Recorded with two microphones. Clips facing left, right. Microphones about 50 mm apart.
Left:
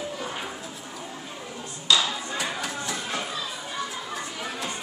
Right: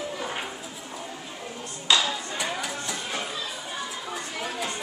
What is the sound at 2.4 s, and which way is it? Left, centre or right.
Music, centre.